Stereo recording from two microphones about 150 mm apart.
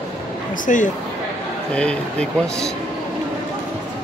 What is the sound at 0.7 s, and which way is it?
Speech, 55° left (ahead or behind).